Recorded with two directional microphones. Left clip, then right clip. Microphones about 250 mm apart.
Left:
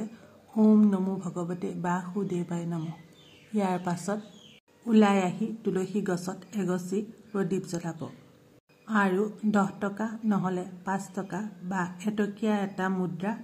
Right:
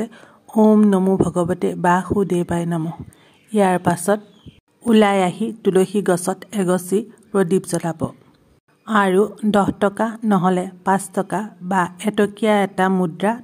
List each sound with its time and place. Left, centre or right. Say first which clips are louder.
0.6 s a woman's voice: right 10 dB; right